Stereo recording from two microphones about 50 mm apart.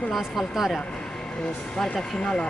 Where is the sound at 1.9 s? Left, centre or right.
Left.